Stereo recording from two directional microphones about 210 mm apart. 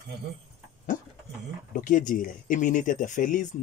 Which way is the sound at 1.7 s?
40° left (ahead or behind).